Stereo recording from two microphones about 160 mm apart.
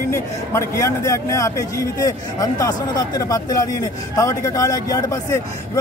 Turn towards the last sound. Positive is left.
turn(degrees=20)  # may be behind; listen again after turning